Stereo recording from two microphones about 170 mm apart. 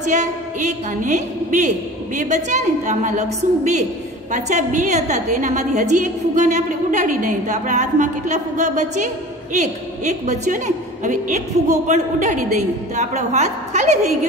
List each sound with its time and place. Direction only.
0.0 s a woman's voice: 45° right (ahead or behind)